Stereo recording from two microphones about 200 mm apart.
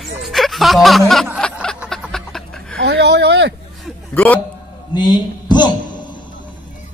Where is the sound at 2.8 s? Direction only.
60° right (ahead or behind).